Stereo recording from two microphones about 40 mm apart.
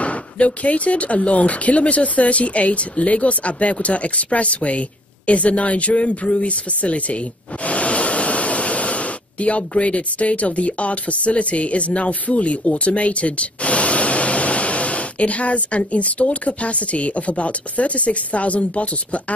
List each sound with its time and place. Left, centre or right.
0.0 s speech: left